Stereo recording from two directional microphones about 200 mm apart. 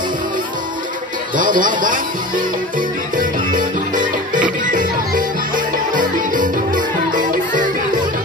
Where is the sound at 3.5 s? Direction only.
40° right (ahead or behind).